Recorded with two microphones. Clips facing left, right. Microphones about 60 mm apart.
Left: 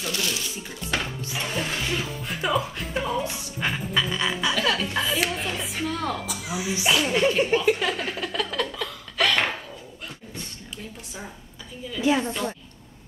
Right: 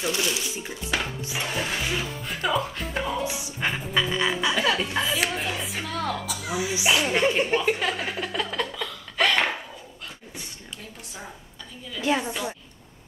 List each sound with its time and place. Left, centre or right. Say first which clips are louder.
0.0 s speech: right 2 dB; centre
1.4 s a woman's voice: even; centre
2.3 s a woman's voice: left 1 dB; centre
3.3 s a woman's voice: even; centre
6.8 s a sound: left 1 dB; centre
11.9 s a woman's voice: left 2 dB; centre
12.2 s speech: left 2 dB; centre